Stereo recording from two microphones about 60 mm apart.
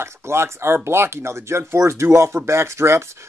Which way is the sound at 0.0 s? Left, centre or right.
Right.